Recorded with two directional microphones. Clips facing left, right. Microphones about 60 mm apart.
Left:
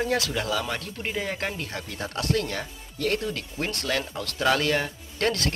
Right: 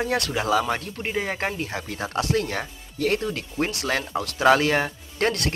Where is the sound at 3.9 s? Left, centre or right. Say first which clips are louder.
Right 3 dB; right.